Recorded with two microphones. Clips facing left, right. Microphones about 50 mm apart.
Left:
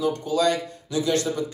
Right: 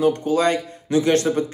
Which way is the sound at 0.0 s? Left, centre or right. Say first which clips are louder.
Right 4 dB; right.